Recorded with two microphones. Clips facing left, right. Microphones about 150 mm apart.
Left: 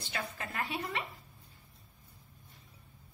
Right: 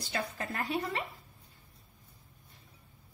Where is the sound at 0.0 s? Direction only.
35° right (ahead or behind).